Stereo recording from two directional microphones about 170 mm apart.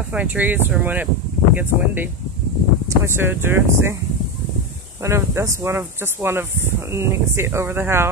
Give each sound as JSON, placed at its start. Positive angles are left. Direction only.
{"t": 0.1, "sound": "speech", "side_deg": -10}
{"t": 5.0, "sound": "speech", "side_deg": -15}